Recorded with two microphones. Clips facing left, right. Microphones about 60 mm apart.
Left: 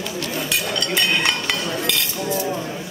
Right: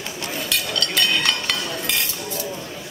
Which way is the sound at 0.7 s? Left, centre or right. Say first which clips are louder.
Left 1 dB; left.